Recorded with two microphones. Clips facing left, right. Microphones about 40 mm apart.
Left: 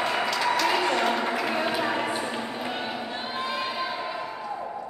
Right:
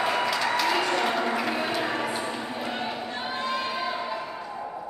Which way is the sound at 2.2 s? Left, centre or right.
Centre.